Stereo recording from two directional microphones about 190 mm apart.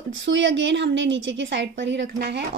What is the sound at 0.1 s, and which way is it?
A woman's voice, 75° right (ahead or behind).